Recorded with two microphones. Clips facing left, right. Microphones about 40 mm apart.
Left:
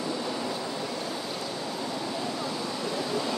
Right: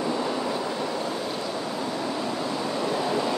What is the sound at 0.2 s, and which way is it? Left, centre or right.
Train, right.